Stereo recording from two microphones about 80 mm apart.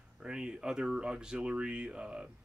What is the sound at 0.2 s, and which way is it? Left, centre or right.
Speech, centre.